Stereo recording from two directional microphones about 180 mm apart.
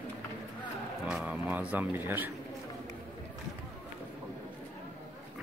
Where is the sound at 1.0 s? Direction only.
5° right (ahead or behind).